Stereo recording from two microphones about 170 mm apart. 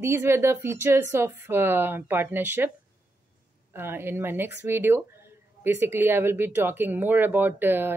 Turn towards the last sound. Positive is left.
turn(degrees=-10)  # may be behind; listen again after turning